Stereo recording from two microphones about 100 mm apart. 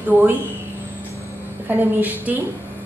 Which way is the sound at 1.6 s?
15° right (ahead or behind).